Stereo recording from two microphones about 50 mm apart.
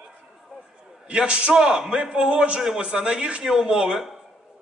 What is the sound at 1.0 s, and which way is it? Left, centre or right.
A man's voice, right.